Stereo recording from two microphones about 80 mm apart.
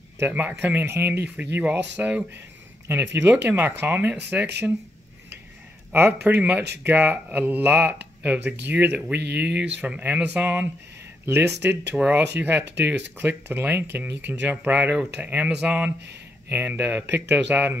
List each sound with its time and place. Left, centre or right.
0.3 s speech: right
2.9 s speech: right
5.9 s speech: right
16.4 s speech: right